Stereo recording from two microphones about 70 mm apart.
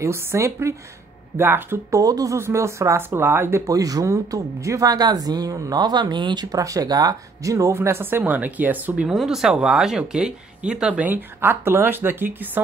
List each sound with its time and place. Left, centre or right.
0.0 s a woman's voice: right
1.9 s speech: right
2.3 s a woman's voice: right
3.6 s speech: right
7.5 s a woman's voice: right
8.2 s speech: right
9.1 s speech: centre
11.1 s speech: right